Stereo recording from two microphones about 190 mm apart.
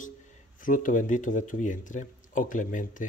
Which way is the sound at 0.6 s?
45° left (ahead or behind).